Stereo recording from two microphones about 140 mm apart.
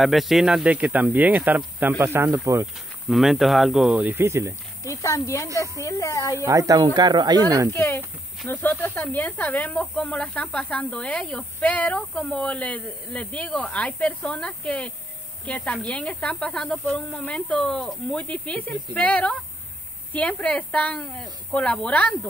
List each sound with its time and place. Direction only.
0.0 s speech: centre (ahead or behind); by 2.6 s 20° right (ahead or behind)
2.6 s speech: centre (ahead or behind)
4.2 s speech: 20° right (ahead or behind)
4.8 s speech: 20° left (ahead or behind)
6.3 s speech: 20° right (ahead or behind)
7.7 s speech: 15° left (ahead or behind)